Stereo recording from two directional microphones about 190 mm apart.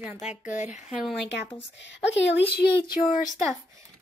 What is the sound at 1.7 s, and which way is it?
A woman's voice, 70° left (ahead or behind).